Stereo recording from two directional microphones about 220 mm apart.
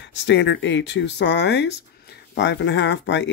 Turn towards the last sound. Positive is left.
turn(degrees=55)  # may be behind; listen again after turning